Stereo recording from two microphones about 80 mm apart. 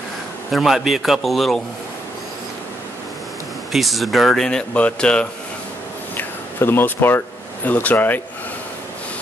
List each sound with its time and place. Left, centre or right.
0.5 s speech: centre
3.7 s speech: centre
6.1 s speech: left